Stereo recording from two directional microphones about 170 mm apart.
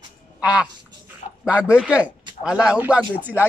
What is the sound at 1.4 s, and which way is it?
A man's voice, 5° right (ahead or behind).